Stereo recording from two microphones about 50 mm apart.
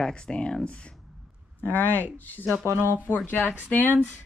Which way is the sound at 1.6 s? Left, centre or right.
Left.